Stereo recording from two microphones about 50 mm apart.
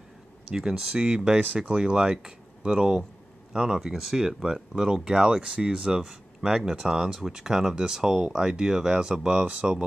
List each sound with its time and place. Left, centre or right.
0.5 s speech: centre
1.0 s speech: right